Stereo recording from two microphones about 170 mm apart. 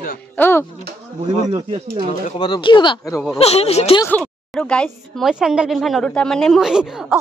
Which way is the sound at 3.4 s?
40° left (ahead or behind).